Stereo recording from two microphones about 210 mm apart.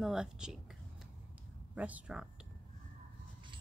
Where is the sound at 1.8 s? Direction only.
5° right (ahead or behind).